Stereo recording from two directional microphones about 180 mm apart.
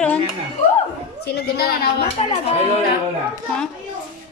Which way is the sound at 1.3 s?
60° left (ahead or behind).